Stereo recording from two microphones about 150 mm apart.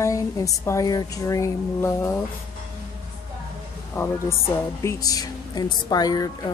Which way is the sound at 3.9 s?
15° left (ahead or behind).